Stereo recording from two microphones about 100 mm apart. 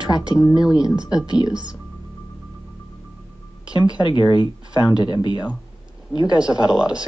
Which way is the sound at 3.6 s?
40° left (ahead or behind).